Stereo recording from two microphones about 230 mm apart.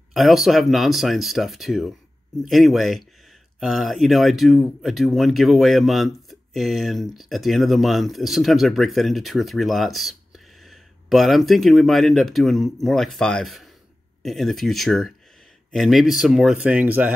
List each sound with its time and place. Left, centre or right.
0.1 s speech: centre